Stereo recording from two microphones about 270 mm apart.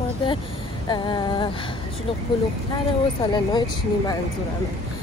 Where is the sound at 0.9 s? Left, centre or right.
Centre.